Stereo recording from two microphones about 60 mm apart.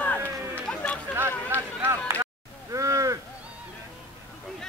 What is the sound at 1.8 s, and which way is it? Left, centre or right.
Speech, right.